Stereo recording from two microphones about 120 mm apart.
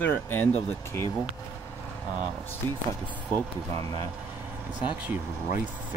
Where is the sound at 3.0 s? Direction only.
15° right (ahead or behind).